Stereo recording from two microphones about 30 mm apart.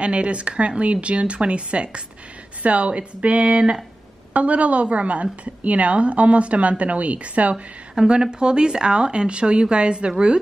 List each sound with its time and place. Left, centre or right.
0.0 s speech: right
2.6 s a woman's voice: right
8.2 s speech: right